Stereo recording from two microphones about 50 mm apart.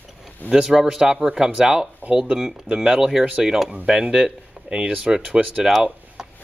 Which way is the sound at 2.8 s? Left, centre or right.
Centre.